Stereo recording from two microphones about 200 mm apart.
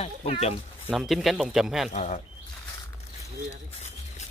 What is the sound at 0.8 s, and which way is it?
Speech, centre (ahead or behind).